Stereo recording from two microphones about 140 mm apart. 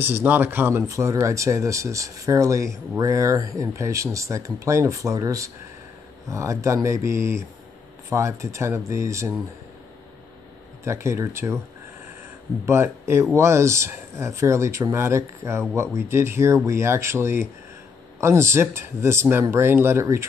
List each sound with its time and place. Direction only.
0.0 s speech: 15° right (ahead or behind)
10.8 s speech: 20° right (ahead or behind)
12.6 s speech: 20° right (ahead or behind)